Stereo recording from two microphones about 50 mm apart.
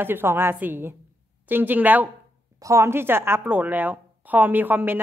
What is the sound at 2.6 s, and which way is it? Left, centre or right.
Speech, right.